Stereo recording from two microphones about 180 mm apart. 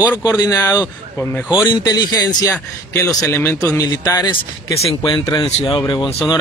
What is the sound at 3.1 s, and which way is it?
Speech, centre (ahead or behind).